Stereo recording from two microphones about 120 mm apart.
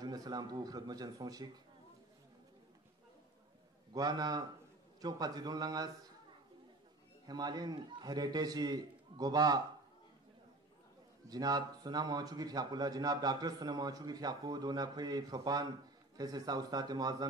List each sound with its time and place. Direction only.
0.0 s a man's voice: 35° right (ahead or behind)
3.9 s a man's voice: 35° right (ahead or behind)
7.2 s a man's voice: 35° right (ahead or behind)
11.2 s a man's voice: 35° right (ahead or behind)